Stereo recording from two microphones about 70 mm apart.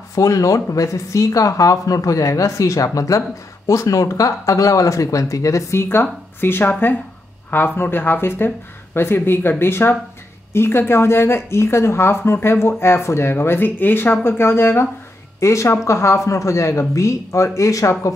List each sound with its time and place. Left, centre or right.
0.1 s speech: left